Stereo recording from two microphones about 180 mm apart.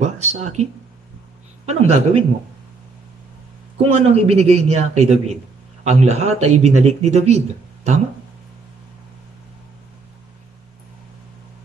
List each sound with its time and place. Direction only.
0.0 s speech: 40° right (ahead or behind)
1.7 s speech: 35° right (ahead or behind)
4.0 s speech: 35° right (ahead or behind)